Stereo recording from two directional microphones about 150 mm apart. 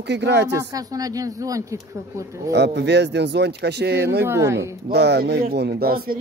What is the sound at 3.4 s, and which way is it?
Speech, 90° right.